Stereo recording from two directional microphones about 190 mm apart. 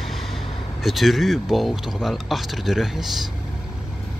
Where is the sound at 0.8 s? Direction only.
Centre (ahead or behind).